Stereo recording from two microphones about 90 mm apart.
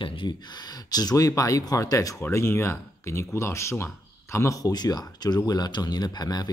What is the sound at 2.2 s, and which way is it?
Speech, 25° left (ahead or behind).